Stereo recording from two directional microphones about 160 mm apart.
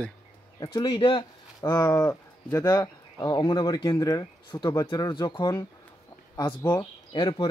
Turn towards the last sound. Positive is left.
turn(degrees=30)  # may be behind; listen again after turning